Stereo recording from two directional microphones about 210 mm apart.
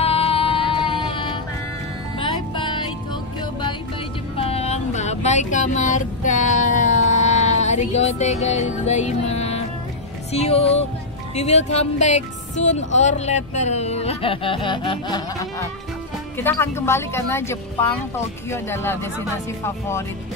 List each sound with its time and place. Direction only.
0.0 s a sound: 30° left (ahead or behind)
2.1 s music: 25° left (ahead or behind)
4.4 s vehicle: 30° left (ahead or behind)
10.3 s music: 30° left (ahead or behind)
11.3 s speech: 30° left (ahead or behind); by 20.1 s 10° left (ahead or behind)